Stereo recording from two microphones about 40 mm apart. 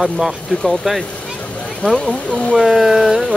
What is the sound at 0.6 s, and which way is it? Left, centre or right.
Speech, centre.